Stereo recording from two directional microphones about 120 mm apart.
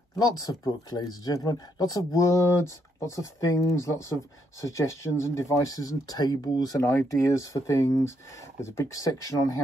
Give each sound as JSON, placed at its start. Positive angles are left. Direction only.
{"t": 0.2, "sound": "speech", "side_deg": 30}